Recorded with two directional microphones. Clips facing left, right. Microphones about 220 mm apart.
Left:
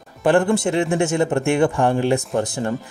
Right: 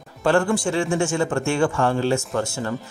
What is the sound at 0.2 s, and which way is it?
Speech, 20° left (ahead or behind).